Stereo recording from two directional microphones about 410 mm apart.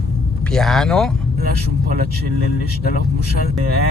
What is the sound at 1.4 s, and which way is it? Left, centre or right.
Speech, right.